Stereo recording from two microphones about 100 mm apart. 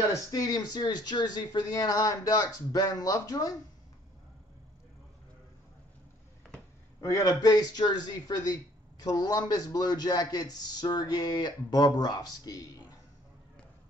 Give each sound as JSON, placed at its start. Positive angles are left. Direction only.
{"t": 0.1, "sound": "speech", "side_deg": 35}
{"t": 7.0, "sound": "a man's voice", "side_deg": 35}